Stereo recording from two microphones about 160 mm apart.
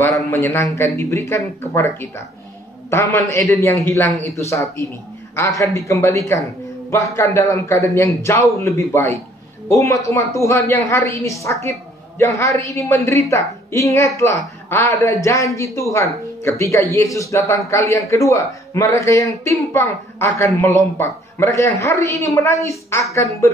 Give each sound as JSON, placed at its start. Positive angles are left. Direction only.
{"t": 0.3, "sound": "a woman's voice", "side_deg": 15}